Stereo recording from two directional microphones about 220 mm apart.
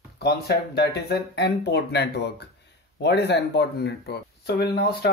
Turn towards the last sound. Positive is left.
turn(degrees=45)  # may be behind; listen again after turning